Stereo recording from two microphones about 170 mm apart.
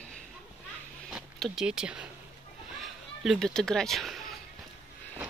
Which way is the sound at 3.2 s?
Centre (ahead or behind).